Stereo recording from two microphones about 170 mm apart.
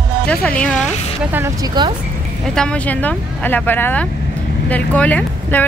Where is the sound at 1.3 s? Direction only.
20° right (ahead or behind).